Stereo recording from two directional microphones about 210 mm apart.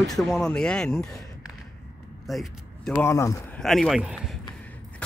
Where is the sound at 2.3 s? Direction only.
Centre (ahead or behind).